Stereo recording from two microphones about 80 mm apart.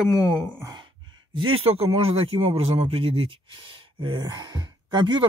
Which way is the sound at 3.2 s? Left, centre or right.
Right.